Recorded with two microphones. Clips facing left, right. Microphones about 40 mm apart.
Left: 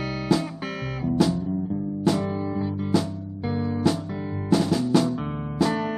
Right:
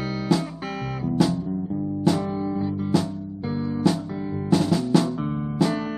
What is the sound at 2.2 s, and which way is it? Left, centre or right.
Guitar, centre.